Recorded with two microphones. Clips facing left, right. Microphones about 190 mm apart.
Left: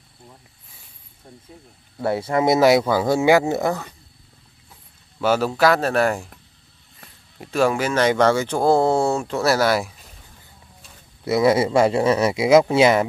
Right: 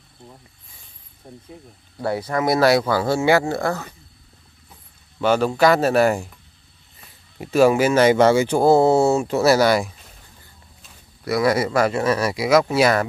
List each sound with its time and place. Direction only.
1.2 s speech: 15° right (ahead or behind)
2.0 s speech: 25° left (ahead or behind)
5.2 s speech: 5° left (ahead or behind)
7.3 s speech: 5° right (ahead or behind)
11.2 s speech: 25° left (ahead or behind)